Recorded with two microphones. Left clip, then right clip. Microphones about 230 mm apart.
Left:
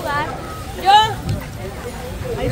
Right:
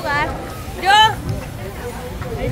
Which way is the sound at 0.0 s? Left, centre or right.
Right.